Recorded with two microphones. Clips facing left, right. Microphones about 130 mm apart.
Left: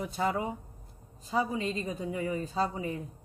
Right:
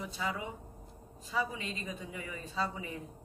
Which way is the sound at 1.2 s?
35° left (ahead or behind).